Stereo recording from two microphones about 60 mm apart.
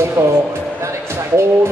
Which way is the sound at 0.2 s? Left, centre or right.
Right.